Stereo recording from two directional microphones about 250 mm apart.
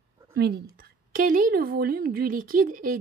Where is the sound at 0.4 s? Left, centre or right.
Right.